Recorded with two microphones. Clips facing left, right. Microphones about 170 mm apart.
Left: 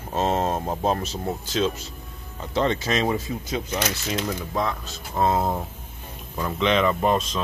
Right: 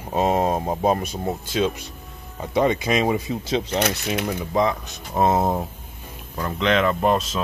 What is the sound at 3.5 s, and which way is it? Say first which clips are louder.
Speech: right 6 dB; 25° right (ahead or behind).